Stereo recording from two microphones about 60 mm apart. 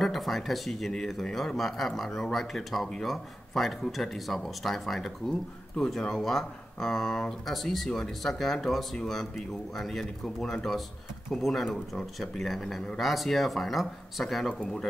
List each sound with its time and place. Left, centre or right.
0.0 s a man's voice: centre